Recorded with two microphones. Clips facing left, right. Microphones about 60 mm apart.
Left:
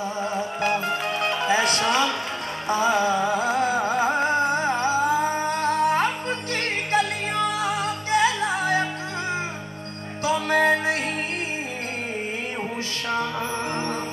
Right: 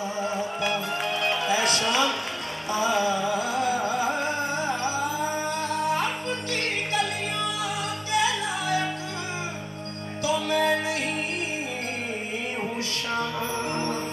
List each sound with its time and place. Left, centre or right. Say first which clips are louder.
0.2 s music: left 2 dB; left
10.2 s music: left 3 dB; left